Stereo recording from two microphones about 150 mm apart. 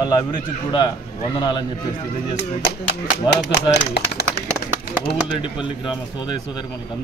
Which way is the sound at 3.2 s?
90° left.